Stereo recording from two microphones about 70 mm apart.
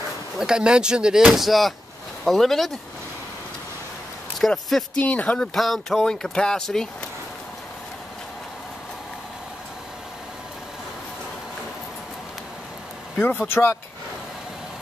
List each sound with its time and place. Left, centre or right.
0.4 s speech: centre
4.4 s speech: centre
4.9 s speech: centre
5.5 s speech: centre
13.5 s speech: left